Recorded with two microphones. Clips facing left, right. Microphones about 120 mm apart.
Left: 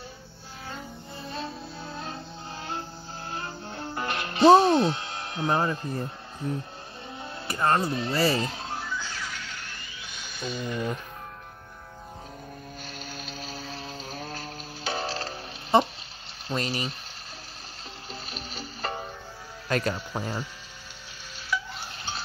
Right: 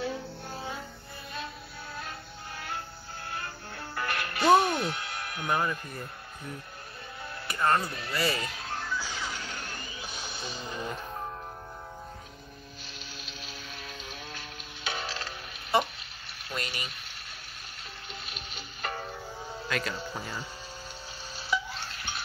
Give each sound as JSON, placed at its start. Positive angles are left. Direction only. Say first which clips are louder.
{"t": 2.0, "sound": "music", "louder": "left 4 dB", "side_deg": 25}
{"t": 7.4, "sound": "speech", "louder": "left 2 dB", "side_deg": 25}
{"t": 8.7, "sound": "music", "louder": "left 1 dB", "side_deg": 5}
{"t": 9.2, "sound": "music", "louder": "right 1 dB", "side_deg": -35}
{"t": 13.2, "sound": "a sound", "louder": "left 7 dB", "side_deg": 40}
{"t": 16.4, "sound": "speech", "louder": "left 7 dB", "side_deg": 30}
{"t": 18.3, "sound": "music", "louder": "left 5 dB", "side_deg": 35}
{"t": 19.7, "sound": "speech", "louder": "left 6 dB", "side_deg": 40}
{"t": 21.5, "sound": "stir", "louder": "even", "side_deg": -25}
{"t": 21.9, "sound": "a sound", "louder": "left 3 dB", "side_deg": 30}